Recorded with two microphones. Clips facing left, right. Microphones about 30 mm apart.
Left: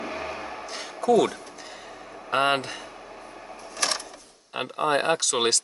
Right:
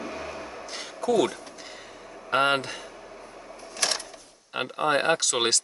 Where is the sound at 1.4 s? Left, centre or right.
Centre.